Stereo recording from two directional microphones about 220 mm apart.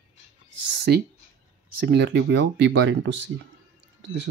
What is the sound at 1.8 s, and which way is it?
Speech, 50° right (ahead or behind).